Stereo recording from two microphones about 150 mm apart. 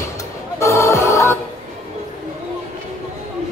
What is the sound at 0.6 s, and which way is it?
Music, 20° left (ahead or behind).